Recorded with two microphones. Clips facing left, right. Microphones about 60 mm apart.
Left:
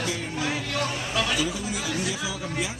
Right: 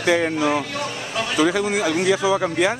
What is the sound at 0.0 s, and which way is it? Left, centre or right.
A man's voice, right.